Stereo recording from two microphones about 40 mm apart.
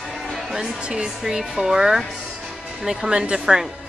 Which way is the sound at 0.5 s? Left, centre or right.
Centre.